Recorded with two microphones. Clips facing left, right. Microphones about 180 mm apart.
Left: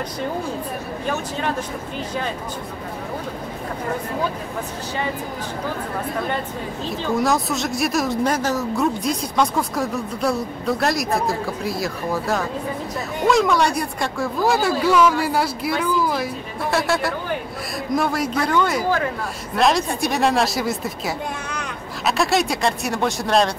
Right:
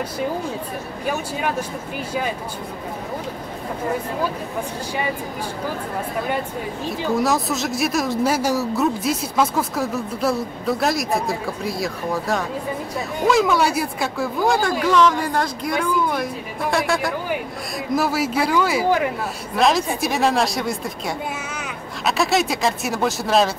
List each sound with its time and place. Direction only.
1.0 s speech: 10° right (ahead or behind)
7.2 s speech: centre (ahead or behind)
18.9 s speech: 15° right (ahead or behind)
19.5 s speech: centre (ahead or behind)